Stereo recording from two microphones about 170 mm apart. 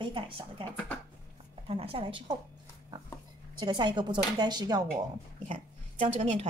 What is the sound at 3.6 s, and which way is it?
A woman's voice, 25° right (ahead or behind).